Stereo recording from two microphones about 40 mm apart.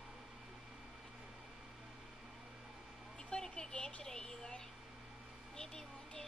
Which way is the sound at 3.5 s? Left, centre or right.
Left.